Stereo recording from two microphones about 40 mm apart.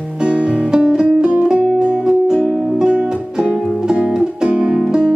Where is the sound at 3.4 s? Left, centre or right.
Centre.